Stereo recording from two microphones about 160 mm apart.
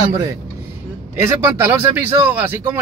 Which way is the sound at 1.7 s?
15° right (ahead or behind).